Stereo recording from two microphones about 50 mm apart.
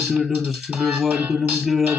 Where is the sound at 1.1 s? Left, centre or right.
Right.